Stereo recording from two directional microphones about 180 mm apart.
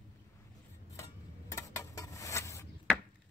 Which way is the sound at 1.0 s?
15° left (ahead or behind).